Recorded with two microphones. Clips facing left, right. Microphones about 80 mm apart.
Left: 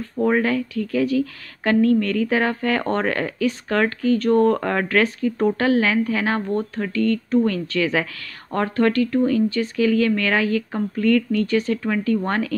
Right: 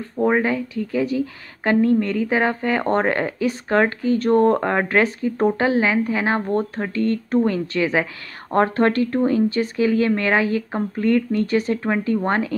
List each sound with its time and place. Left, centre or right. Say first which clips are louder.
0.2 s a woman's voice: even; centre